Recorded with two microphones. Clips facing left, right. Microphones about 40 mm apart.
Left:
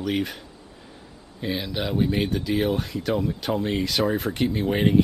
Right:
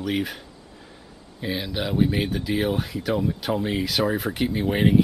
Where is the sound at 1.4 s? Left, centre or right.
Centre.